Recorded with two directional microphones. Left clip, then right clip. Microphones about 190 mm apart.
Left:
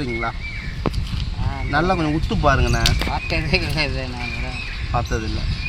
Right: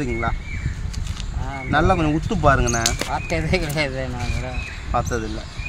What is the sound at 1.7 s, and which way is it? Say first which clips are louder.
Speech: right 1 dB; 10° left (ahead or behind).